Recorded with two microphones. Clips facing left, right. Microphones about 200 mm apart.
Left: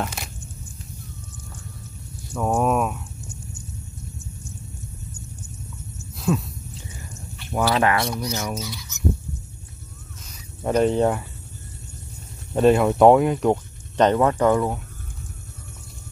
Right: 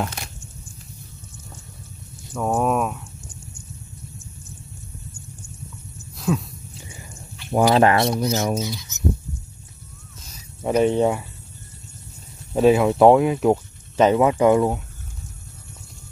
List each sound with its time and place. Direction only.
0.0 s a sound: centre (ahead or behind)
2.3 s speech: centre (ahead or behind)
6.1 s a sound: centre (ahead or behind)
7.7 s speech: 30° right (ahead or behind)
10.6 s speech: 5° right (ahead or behind)
12.5 s speech: centre (ahead or behind)